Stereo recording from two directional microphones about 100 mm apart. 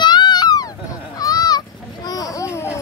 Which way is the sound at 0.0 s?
45° left (ahead or behind).